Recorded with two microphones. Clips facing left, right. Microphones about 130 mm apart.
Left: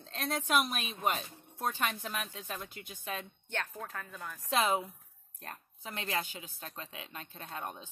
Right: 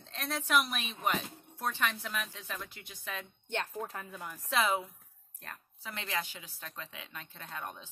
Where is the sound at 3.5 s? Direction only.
20° right (ahead or behind).